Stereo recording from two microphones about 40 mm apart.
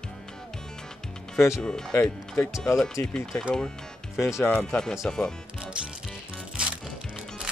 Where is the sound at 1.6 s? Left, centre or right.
Centre.